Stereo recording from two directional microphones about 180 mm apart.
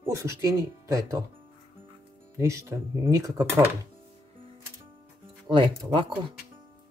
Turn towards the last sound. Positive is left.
turn(degrees=-25)  # may be behind; listen again after turning